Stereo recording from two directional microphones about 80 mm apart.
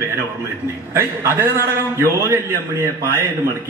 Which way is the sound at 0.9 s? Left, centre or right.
Right.